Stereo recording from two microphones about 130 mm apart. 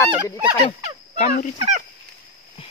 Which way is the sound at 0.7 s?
60° left (ahead or behind).